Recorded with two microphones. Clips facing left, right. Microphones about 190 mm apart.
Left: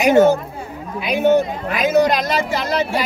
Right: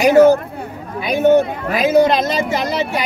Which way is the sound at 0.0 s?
35° right (ahead or behind).